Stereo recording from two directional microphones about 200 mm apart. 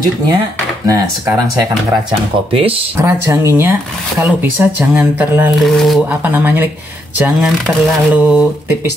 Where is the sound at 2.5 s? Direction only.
30° right (ahead or behind).